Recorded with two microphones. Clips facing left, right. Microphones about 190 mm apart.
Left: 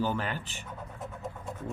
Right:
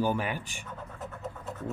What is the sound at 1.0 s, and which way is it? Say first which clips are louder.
Vehicle: even; 10° left (ahead or behind).